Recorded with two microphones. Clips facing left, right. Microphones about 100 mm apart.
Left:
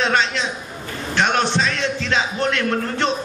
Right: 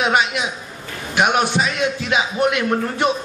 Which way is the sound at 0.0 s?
10° right (ahead or behind).